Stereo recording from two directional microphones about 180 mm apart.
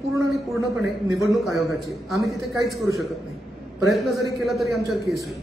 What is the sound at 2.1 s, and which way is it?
A man's voice, centre (ahead or behind).